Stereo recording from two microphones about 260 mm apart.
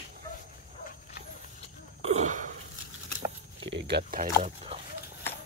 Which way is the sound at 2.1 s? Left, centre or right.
Right.